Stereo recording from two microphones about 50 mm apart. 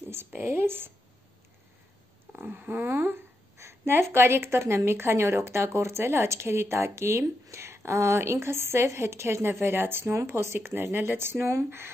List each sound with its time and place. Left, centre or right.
0.4 s speech: right
2.3 s speech: right
3.5 s a woman's voice: right
10.1 s speech: right